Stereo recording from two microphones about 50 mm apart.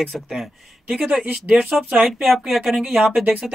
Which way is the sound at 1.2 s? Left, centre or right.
Right.